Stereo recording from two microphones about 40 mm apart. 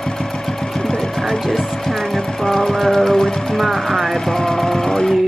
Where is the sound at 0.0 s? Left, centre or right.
Centre.